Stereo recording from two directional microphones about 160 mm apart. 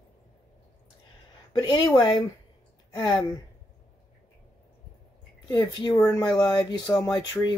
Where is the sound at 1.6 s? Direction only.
25° left (ahead or behind).